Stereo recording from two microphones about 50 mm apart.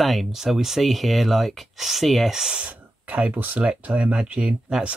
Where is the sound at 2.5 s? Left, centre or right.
Right.